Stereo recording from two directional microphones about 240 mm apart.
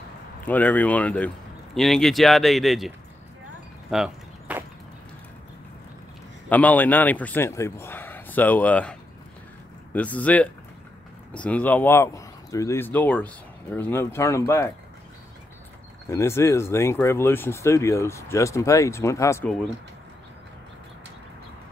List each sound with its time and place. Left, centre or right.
0.5 s speech: centre
3.9 s a sound: centre
6.5 s speech: centre
9.9 s speech: centre
16.1 s speech: centre